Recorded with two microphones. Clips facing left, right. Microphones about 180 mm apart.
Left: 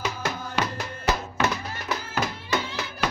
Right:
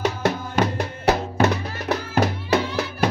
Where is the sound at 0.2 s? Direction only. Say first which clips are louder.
Right 7 dB; 60° right (ahead or behind).